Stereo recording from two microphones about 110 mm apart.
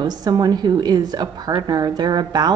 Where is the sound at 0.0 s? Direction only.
40° right (ahead or behind).